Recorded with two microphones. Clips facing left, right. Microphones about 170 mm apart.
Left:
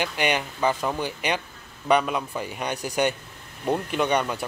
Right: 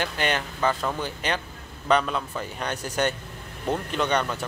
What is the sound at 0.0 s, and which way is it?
Speech, 15° left (ahead or behind).